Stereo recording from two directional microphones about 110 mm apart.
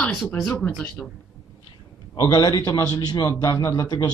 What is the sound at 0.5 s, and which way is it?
Speech, 15° left (ahead or behind).